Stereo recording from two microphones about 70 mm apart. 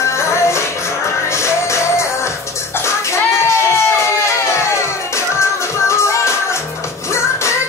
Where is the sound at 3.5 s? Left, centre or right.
Left.